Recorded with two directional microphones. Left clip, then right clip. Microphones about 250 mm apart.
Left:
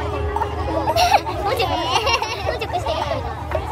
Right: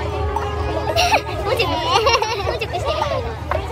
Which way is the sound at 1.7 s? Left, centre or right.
Centre.